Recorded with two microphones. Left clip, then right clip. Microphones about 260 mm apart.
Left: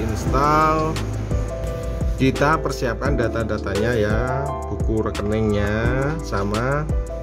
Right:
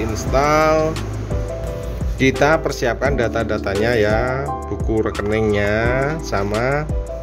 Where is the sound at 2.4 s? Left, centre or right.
Left.